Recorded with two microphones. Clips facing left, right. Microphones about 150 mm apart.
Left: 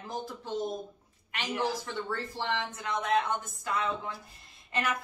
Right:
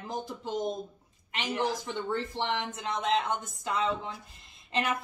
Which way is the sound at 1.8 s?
20° right (ahead or behind).